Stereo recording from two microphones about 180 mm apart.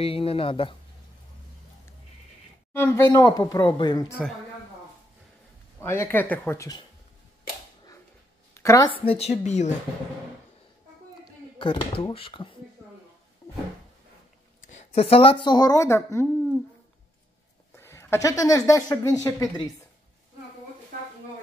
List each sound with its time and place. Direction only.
0.0 s speech: 30° left (ahead or behind)
2.7 s speech: 10° left (ahead or behind)
5.8 s speech: 15° left (ahead or behind)
8.5 s a sound: 15° left (ahead or behind)
8.9 s a woman's voice: 30° left (ahead or behind)
11.5 s speech: 30° left (ahead or behind)
13.4 s a sound: 15° left (ahead or behind)
14.6 s speech: 40° left (ahead or behind); by 16.5 s 15° left (ahead or behind)
17.7 s speech: 15° left (ahead or behind)